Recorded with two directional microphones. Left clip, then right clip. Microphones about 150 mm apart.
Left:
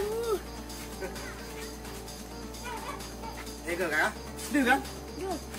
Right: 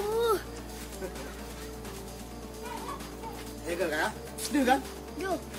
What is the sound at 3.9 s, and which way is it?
Speech, centre (ahead or behind).